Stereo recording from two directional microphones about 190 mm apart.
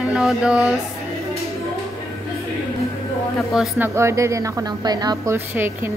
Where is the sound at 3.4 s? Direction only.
Centre (ahead or behind).